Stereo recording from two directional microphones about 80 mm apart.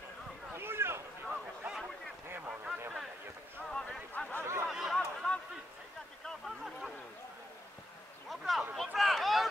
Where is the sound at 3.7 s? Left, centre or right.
Centre.